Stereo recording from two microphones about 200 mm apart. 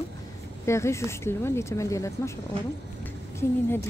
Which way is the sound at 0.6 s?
15° left (ahead or behind).